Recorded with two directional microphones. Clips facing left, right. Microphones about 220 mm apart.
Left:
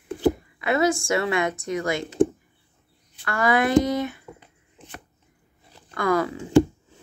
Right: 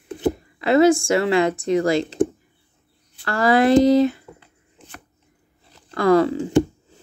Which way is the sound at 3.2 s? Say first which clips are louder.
Right 5 dB; 35° right (ahead or behind).